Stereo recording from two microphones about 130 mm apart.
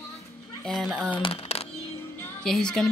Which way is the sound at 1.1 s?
45° left (ahead or behind).